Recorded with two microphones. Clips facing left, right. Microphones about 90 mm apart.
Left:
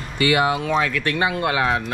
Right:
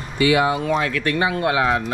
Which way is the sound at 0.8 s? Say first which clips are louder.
Right 1 dB; 40° right (ahead or behind).